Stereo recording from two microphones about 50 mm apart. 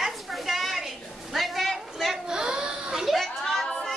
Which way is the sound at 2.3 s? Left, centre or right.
Centre.